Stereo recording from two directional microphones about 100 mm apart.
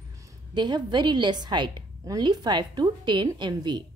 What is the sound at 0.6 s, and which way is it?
A woman's voice, 45° right (ahead or behind).